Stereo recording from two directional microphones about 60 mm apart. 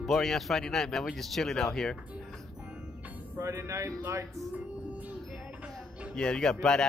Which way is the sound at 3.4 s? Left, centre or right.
Right.